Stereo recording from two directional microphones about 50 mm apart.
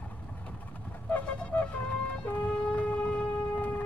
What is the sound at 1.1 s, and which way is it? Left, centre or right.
Wind instrument, left.